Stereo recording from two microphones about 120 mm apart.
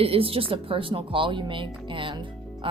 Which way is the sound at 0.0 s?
50° right (ahead or behind).